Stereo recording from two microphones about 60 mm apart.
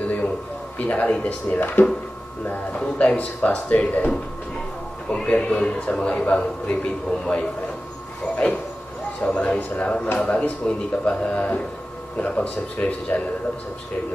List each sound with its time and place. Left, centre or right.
0.7 s a man's voice: left
5.1 s a man's voice: centre
9.2 s a man's voice: left